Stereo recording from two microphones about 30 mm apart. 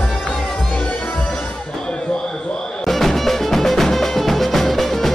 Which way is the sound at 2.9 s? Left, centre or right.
Centre.